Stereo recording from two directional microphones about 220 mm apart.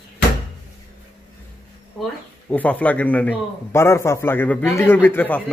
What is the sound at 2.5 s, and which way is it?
A man's voice, 5° left (ahead or behind).